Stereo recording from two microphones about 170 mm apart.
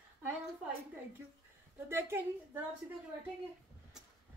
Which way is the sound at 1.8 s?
15° right (ahead or behind).